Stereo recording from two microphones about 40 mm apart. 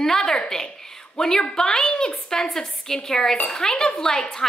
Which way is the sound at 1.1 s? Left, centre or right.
Centre.